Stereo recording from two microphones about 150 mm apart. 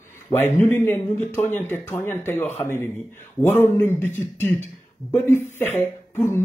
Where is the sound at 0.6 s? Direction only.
15° left (ahead or behind).